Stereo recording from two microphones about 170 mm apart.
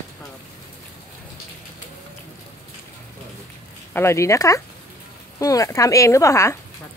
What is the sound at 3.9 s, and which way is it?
Speech, 15° left (ahead or behind).